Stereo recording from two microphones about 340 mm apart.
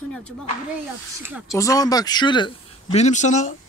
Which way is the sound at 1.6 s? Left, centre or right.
Centre.